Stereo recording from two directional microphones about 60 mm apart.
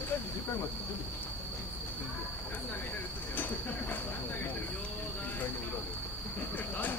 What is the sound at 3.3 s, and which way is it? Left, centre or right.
Train, left.